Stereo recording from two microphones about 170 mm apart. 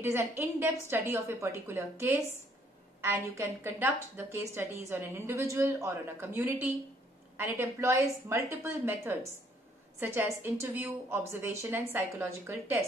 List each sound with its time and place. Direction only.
0.0 s a woman's voice: 15° right (ahead or behind)